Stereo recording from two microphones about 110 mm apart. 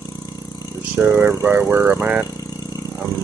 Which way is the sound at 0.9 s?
20° right (ahead or behind).